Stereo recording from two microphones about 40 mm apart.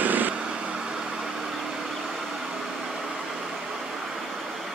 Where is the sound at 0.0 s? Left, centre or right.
Right.